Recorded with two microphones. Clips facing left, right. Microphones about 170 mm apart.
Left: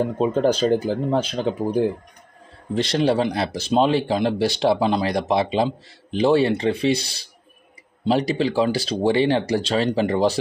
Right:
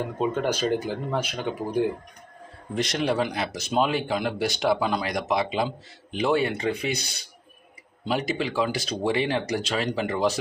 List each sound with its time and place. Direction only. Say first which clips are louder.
0.0 s speech: left 6 dB; 30° left (ahead or behind)